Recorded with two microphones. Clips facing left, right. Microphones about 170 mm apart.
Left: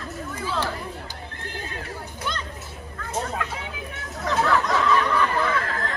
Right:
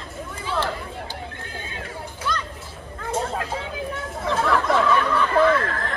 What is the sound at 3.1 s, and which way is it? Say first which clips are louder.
Hubbub: right 2 dB; 30° right (ahead or behind).